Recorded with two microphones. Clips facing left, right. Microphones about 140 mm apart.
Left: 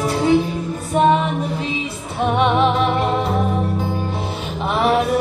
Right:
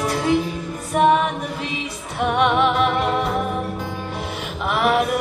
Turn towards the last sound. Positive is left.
turn(degrees=30)  # may be behind; listen again after turning